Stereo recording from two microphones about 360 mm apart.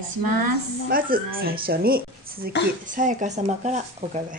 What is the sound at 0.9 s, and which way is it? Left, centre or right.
A woman's voice, right.